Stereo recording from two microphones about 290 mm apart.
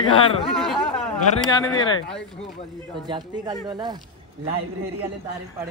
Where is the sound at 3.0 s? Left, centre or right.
Centre.